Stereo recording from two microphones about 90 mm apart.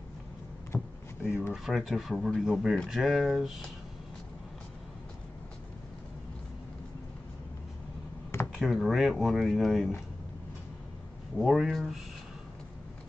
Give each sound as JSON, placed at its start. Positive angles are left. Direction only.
{"t": 0.7, "sound": "a sound", "side_deg": 20}
{"t": 1.5, "sound": "speech", "side_deg": -5}
{"t": 8.5, "sound": "speech", "side_deg": 0}
{"t": 11.3, "sound": "speech", "side_deg": -5}